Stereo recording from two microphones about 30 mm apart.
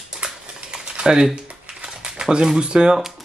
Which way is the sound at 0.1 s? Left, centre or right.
Right.